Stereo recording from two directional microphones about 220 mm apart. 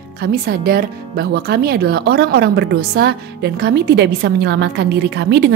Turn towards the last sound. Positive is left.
turn(degrees=-50)  # may be behind; listen again after turning